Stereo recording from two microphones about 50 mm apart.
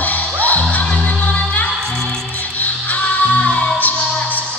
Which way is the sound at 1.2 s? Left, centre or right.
Left.